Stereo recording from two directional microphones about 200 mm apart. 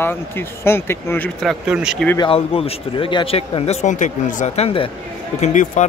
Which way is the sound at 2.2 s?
30° left (ahead or behind).